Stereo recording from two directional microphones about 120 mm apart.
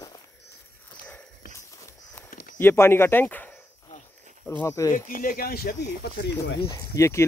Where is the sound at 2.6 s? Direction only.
20° left (ahead or behind).